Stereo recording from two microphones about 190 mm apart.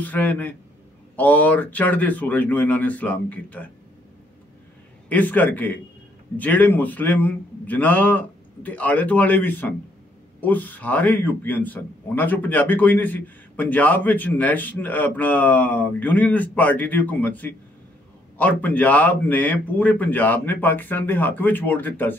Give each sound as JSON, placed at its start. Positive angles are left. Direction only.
{"t": 0.0, "sound": "a man's voice", "side_deg": 10}
{"t": 5.1, "sound": "a man's voice", "side_deg": 10}